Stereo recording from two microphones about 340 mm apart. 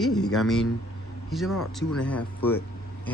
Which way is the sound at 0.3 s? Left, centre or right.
Centre.